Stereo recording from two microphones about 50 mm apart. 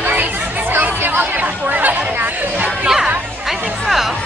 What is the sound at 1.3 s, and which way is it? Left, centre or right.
Chatter, right.